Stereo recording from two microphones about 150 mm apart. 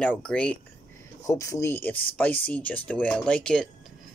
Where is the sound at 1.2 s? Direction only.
20° left (ahead or behind).